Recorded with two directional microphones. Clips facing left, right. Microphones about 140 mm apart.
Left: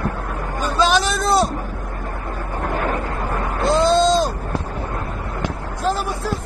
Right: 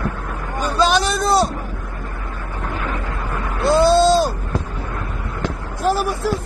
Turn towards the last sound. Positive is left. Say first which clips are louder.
# right 4 dB
turn(degrees=20)  # may be behind; listen again after turning